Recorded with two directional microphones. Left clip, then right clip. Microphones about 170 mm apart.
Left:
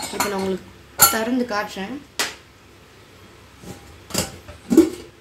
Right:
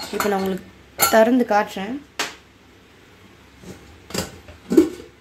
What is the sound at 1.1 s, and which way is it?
Speech, 65° right (ahead or behind).